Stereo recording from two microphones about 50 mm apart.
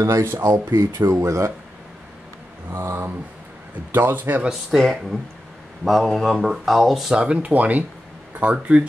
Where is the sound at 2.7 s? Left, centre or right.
Right.